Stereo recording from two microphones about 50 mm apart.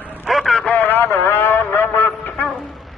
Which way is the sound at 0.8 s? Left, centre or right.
Left.